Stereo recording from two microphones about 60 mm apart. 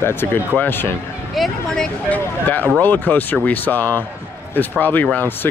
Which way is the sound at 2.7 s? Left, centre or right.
Left.